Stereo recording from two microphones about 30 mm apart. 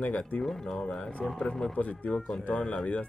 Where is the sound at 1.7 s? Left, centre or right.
Left.